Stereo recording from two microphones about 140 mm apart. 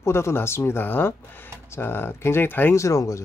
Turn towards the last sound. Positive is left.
turn(degrees=20)  # may be behind; listen again after turning